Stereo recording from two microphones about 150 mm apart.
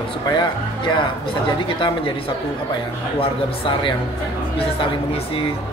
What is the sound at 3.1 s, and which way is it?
Speech, 35° left (ahead or behind).